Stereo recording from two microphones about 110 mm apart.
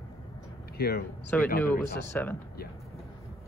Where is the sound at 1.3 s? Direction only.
15° left (ahead or behind).